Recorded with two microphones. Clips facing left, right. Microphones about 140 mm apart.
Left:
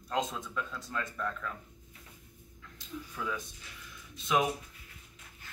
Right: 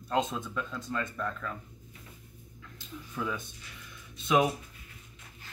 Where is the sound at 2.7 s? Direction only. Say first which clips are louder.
Right 2 dB; 10° right (ahead or behind).